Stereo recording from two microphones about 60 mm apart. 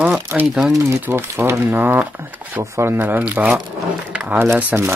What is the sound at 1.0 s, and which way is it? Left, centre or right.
Speech, right.